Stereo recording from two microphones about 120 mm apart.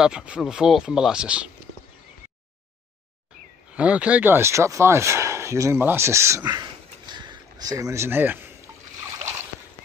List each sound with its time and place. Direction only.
0.0 s speech: 5° right (ahead or behind)
3.7 s speech: 10° right (ahead or behind)